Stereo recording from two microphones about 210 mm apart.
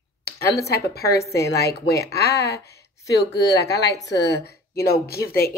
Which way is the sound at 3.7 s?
15° left (ahead or behind).